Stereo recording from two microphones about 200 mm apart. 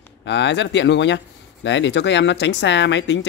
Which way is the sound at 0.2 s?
60° left (ahead or behind).